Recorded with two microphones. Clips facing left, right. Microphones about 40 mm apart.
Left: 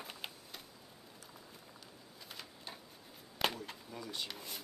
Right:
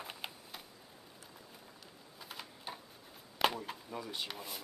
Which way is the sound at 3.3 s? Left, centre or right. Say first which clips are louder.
Right 4 dB; centre.